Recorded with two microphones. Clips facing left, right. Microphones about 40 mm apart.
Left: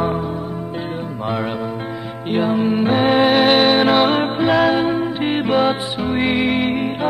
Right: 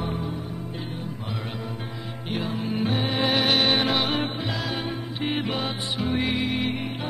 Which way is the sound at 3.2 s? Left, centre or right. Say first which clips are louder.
Left 9 dB; left.